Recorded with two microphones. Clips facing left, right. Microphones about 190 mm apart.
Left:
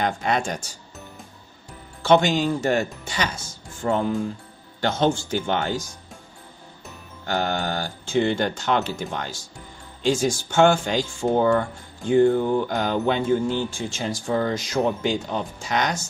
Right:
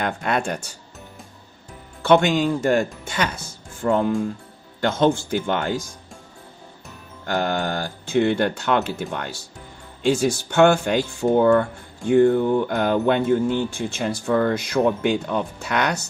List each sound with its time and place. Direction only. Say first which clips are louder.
0.0 s speech: even; 55° right (ahead or behind)
2.0 s speech: right 1 dB; 55° right (ahead or behind)
7.2 s speech: right 2 dB; 50° right (ahead or behind)